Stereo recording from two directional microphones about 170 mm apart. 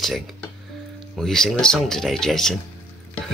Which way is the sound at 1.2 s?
5° left (ahead or behind).